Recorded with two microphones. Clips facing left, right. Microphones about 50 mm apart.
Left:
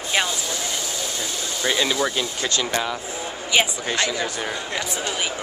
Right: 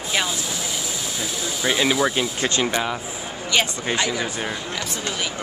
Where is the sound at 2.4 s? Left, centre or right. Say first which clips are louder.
Right 2 dB; right.